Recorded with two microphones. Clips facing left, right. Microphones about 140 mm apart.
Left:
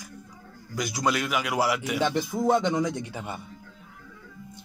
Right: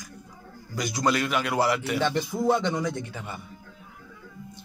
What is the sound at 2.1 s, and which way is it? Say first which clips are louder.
Speech: left 2 dB; centre (ahead or behind).